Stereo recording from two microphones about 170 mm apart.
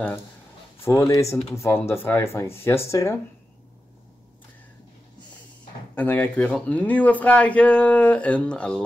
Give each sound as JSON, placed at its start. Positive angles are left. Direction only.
{"t": 0.8, "sound": "speech", "side_deg": 15}
{"t": 5.9, "sound": "speech", "side_deg": 10}